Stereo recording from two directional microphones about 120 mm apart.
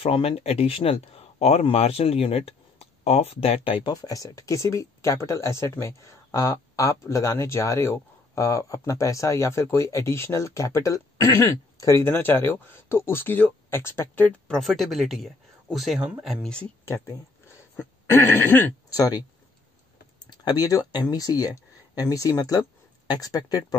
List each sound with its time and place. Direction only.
0.0 s speech: 50° left (ahead or behind)
3.9 s speech: 30° left (ahead or behind); by 14.6 s 10° left (ahead or behind)
14.6 s speech: centre (ahead or behind)
17.5 s throat clearing: 20° left (ahead or behind)
18.9 s speech: 30° left (ahead or behind)
20.2 s speech: 35° left (ahead or behind)